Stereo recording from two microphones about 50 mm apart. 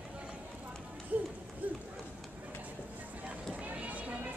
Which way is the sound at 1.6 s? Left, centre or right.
Right.